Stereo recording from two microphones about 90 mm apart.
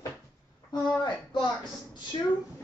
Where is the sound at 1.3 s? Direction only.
60° left (ahead or behind).